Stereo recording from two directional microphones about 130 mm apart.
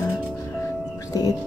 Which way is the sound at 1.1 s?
25° left (ahead or behind).